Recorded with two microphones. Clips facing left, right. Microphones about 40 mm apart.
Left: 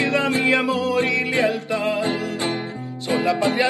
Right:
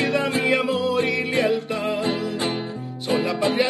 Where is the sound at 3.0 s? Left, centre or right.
Left.